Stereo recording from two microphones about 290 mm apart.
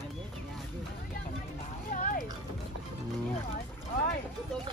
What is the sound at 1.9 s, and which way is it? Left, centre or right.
Music, left.